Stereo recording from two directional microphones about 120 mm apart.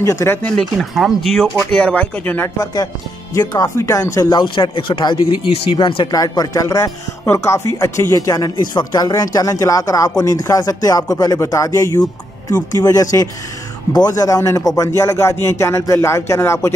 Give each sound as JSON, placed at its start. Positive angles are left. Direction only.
{"t": 0.0, "sound": "speech", "side_deg": 25}
{"t": 0.7, "sound": "speech", "side_deg": 0}
{"t": 2.6, "sound": "speech", "side_deg": 35}
{"t": 4.3, "sound": "speech", "side_deg": 40}
{"t": 6.1, "sound": "speech", "side_deg": 30}